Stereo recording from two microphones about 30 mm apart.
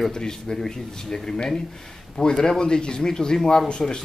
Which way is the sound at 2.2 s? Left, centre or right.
Left.